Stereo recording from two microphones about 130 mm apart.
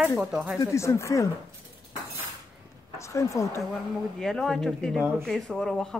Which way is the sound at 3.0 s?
25° left (ahead or behind).